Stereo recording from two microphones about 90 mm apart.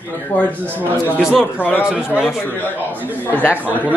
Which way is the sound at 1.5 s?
20° left (ahead or behind).